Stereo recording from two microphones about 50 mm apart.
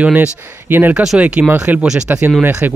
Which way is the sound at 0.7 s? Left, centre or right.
Right.